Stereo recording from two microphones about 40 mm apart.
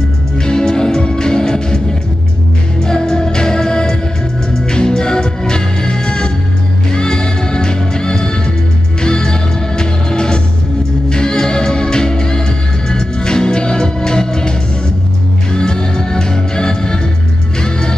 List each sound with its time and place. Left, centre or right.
0.5 s music: centre
2.8 s music: centre
15.5 s music: centre